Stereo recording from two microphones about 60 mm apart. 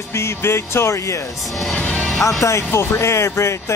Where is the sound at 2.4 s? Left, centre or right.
Left.